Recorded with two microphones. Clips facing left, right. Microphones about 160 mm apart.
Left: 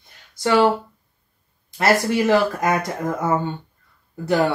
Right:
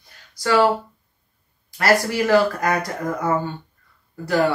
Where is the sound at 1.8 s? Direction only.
20° left (ahead or behind).